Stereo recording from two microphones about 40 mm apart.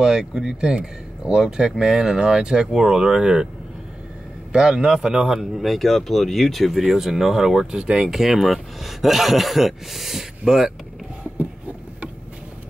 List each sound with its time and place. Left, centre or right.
0.0 s a man's voice: centre
4.5 s a man's voice: right
8.1 s a man's voice: centre
11.3 s a sound: right